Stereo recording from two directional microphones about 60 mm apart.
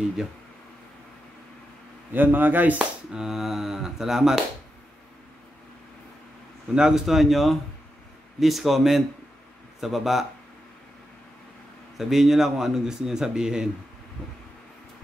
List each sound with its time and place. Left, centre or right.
2.1 s speech: right
3.1 s a man's voice: centre
6.7 s speech: centre
12.0 s a man's voice: centre